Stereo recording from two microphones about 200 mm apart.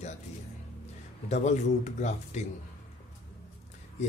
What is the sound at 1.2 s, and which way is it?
Speech, 35° left (ahead or behind).